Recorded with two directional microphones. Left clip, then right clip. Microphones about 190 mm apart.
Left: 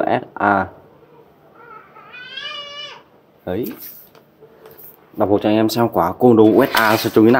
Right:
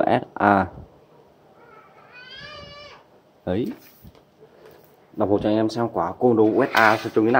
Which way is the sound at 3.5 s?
25° right (ahead or behind).